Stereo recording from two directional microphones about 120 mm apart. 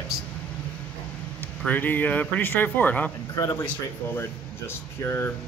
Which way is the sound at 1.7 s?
15° left (ahead or behind).